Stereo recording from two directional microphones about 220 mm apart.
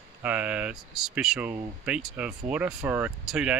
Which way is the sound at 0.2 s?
5° right (ahead or behind).